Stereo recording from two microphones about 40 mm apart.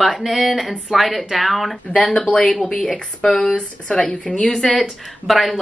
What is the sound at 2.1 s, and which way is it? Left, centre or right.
Speech, left.